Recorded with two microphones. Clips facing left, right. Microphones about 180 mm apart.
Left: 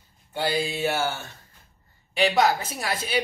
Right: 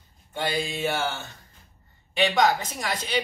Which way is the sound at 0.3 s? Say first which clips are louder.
Left 2 dB; 10° left (ahead or behind).